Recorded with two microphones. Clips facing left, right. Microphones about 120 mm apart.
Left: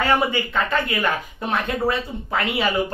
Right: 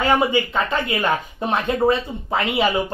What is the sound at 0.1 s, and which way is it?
Speech, 15° right (ahead or behind).